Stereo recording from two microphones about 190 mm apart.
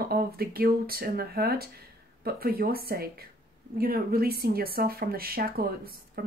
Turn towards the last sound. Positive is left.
turn(degrees=-55)  # may be behind; listen again after turning